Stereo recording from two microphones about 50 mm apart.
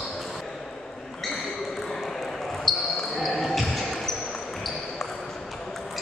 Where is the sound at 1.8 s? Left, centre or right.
Centre.